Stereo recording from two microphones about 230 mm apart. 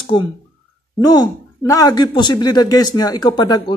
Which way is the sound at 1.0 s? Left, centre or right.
Centre.